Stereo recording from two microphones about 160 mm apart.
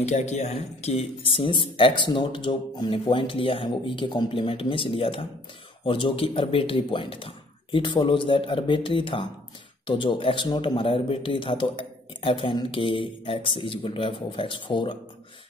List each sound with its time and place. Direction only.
0.0 s speech: 45° left (ahead or behind)